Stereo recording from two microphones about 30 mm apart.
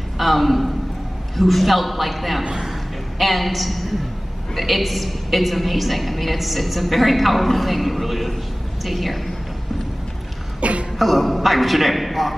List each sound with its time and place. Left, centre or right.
0.2 s a woman's voice: centre
10.6 s cough: right
11.0 s a woman's voice: centre